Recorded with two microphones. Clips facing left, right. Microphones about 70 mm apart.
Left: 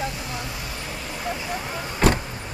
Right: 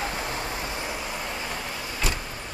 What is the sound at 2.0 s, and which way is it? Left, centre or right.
Vehicle, left.